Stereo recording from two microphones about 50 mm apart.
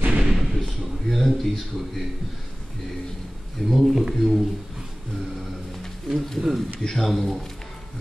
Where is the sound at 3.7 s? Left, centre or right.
Centre.